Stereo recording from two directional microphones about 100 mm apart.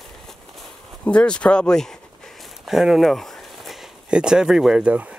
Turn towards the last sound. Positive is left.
turn(degrees=-15)  # may be behind; listen again after turning